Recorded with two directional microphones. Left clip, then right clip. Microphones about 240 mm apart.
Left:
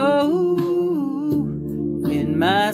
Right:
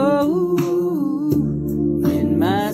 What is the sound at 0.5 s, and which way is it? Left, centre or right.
Humming, right.